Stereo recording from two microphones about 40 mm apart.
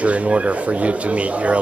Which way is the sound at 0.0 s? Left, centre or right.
Right.